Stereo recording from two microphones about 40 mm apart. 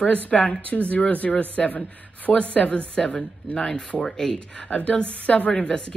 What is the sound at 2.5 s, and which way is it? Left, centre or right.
Speech, left.